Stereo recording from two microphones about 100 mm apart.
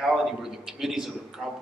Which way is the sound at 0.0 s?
5° right (ahead or behind).